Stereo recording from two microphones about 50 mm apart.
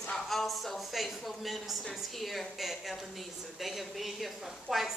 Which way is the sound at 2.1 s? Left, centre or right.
Centre.